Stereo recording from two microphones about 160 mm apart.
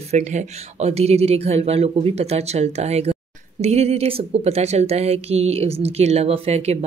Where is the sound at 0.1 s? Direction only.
45° right (ahead or behind).